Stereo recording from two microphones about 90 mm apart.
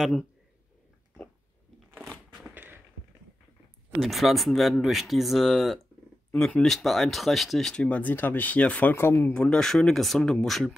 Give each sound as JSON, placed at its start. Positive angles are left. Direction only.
{"t": 0.0, "sound": "speech", "side_deg": 0}
{"t": 2.0, "sound": "a sound", "side_deg": 0}
{"t": 2.5, "sound": "a sound", "side_deg": -20}
{"t": 4.0, "sound": "speech", "side_deg": 0}
{"t": 8.9, "sound": "speech", "side_deg": 25}
{"t": 9.3, "sound": "speech", "side_deg": 10}